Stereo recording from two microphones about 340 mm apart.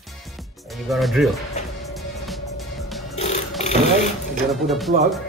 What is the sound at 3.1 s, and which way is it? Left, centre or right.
Music, centre.